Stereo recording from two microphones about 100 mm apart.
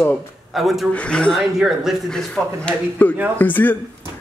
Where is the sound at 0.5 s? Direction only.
Centre (ahead or behind).